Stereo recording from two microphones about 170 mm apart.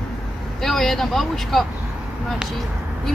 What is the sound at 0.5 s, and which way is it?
Speech, centre (ahead or behind).